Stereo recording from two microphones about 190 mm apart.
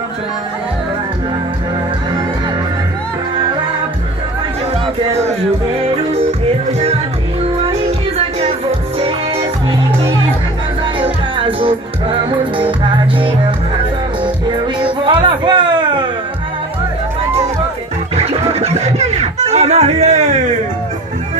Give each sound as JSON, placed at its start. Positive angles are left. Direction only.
{"t": 11.0, "sound": "music", "side_deg": -25}
{"t": 14.8, "sound": "music", "side_deg": -25}
{"t": 18.1, "sound": "music", "side_deg": -35}